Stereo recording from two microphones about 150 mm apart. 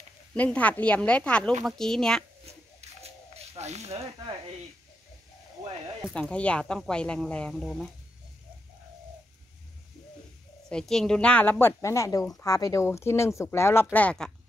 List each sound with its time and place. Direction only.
0.3 s a woman's voice: 10° left (ahead or behind)
2.4 s a sound: 45° right (ahead or behind)
6.1 s a woman's voice: 10° left (ahead or behind)
10.7 s a woman's voice: 5° left (ahead or behind)